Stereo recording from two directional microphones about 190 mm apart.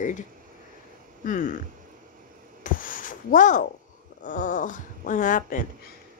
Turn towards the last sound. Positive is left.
turn(degrees=45)  # may be behind; listen again after turning